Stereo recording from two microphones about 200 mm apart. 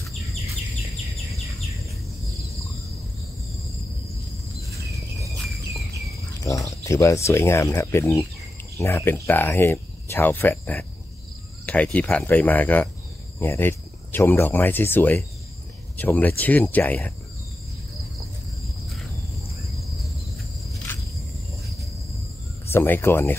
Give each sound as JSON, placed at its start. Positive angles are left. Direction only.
{"t": 6.4, "sound": "speech", "side_deg": 15}
{"t": 22.7, "sound": "speech", "side_deg": 10}